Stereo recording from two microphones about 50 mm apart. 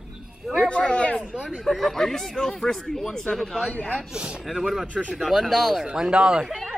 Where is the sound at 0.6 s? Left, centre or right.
Left.